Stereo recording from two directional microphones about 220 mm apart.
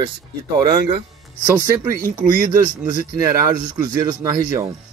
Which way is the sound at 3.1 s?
15° right (ahead or behind).